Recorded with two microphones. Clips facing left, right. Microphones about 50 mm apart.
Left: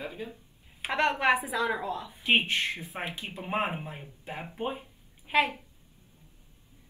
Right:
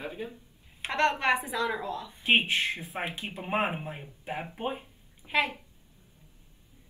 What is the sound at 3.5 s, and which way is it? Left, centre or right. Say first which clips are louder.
Speech: right 1 dB; centre.